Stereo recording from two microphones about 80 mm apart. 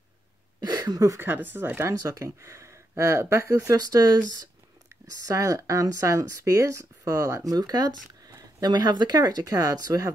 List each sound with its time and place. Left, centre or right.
0.6 s a sound: right
1.2 s speech: right
2.0 s speech: right
5.0 s speech: right
7.5 s speech: right